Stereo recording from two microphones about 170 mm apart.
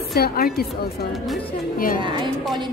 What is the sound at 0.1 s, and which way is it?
Speech, 65° left (ahead or behind).